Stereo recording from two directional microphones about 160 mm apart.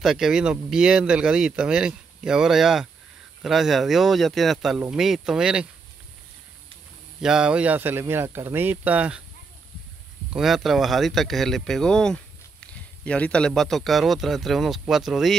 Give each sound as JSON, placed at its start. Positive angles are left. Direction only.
{"t": 0.0, "sound": "speech", "side_deg": -5}
{"t": 7.2, "sound": "speech", "side_deg": -5}
{"t": 10.3, "sound": "speech", "side_deg": 0}